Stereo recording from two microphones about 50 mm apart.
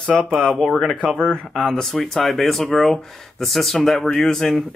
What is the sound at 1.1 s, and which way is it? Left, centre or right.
Speech, centre.